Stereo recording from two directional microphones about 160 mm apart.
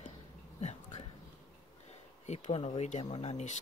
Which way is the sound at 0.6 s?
45° left (ahead or behind).